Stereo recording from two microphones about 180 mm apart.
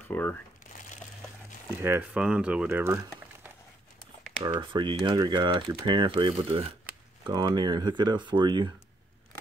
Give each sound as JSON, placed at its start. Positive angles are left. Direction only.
{"t": 0.1, "sound": "speech", "side_deg": 10}
{"t": 1.8, "sound": "speech", "side_deg": -10}
{"t": 4.4, "sound": "speech", "side_deg": -25}